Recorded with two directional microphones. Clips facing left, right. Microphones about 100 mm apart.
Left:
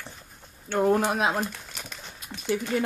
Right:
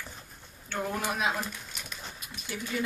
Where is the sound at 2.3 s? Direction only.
75° left (ahead or behind).